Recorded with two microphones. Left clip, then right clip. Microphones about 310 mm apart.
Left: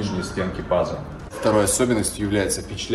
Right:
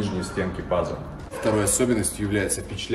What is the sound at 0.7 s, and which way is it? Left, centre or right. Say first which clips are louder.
Speech: left 4 dB; centre.